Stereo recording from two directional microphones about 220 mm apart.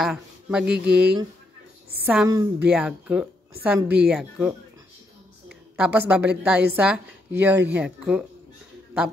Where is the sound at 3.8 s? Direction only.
50° right (ahead or behind).